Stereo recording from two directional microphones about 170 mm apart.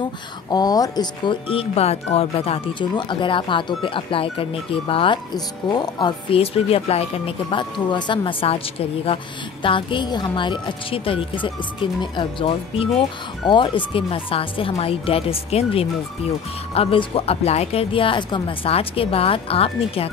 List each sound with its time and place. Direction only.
0.5 s a woman's voice: 25° left (ahead or behind)